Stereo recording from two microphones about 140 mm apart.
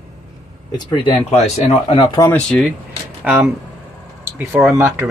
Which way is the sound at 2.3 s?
5° left (ahead or behind).